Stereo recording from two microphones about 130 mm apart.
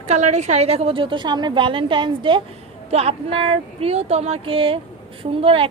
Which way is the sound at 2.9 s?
50° right (ahead or behind).